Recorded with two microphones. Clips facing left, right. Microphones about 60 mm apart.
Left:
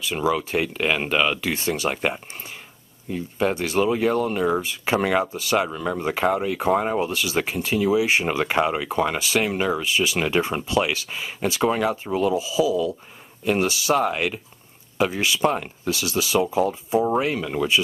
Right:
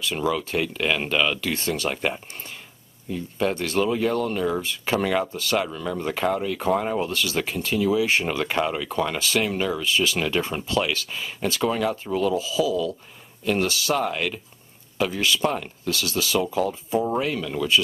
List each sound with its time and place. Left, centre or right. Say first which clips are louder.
0.0 s speech: left 2 dB; centre